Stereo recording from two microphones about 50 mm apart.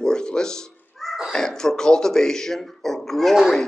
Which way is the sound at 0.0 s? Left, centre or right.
Centre.